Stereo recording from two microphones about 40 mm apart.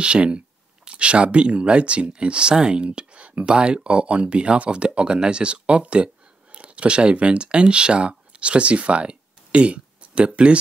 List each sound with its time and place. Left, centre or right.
0.0 s speech: right